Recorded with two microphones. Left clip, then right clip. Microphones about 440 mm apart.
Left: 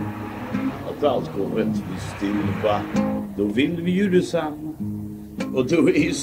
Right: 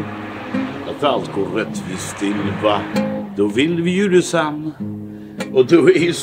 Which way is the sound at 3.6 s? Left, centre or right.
Right.